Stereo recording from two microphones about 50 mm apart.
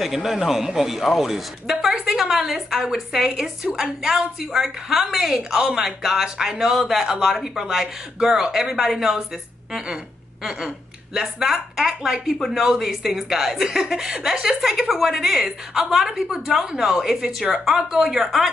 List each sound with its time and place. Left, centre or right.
0.0 s a man's voice: centre
11.1 s speech: centre